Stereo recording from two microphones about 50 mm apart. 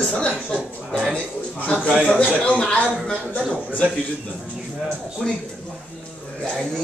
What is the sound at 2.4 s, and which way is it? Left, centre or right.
Speech, left.